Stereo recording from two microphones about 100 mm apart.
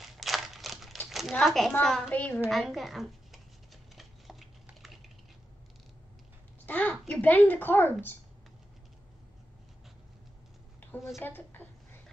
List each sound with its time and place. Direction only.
0.0 s a sound: centre (ahead or behind)
1.3 s a child's voice: 5° left (ahead or behind)
2.0 s speech: 15° left (ahead or behind)
2.5 s scissors: centre (ahead or behind)
6.6 s speech: 15° left (ahead or behind)
11.1 s a woman's voice: 20° left (ahead or behind)